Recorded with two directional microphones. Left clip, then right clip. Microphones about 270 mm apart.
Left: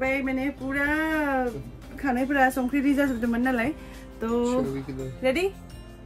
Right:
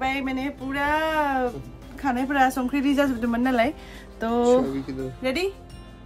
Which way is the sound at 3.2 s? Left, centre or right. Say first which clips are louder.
Right 3 dB; centre.